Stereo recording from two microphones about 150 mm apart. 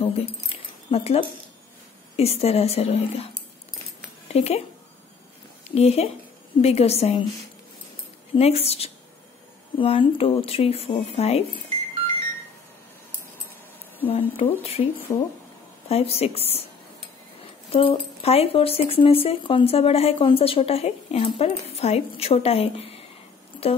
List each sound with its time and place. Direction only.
0.0 s keys jangling: 40° left (ahead or behind)
2.1 s a woman's voice: 40° left (ahead or behind)
4.3 s speech: 45° left (ahead or behind)
5.8 s a woman's voice: 45° left (ahead or behind)
8.4 s a woman's voice: 45° left (ahead or behind)
14.0 s speech: 40° left (ahead or behind)
15.1 s speech: 25° left (ahead or behind)
15.9 s speech: 40° left (ahead or behind)
17.7 s speech: 40° left (ahead or behind)